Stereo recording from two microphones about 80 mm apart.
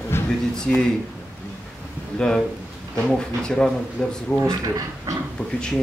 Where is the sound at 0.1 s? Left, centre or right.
Left.